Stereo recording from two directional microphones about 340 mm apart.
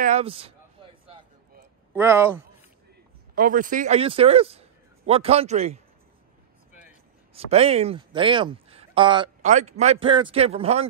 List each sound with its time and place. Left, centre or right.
0.0 s speech: centre
1.0 s a sound: centre
2.0 s speech: centre
3.3 s speech: right
7.3 s speech: centre